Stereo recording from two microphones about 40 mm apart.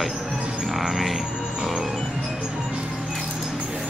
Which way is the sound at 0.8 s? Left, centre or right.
Centre.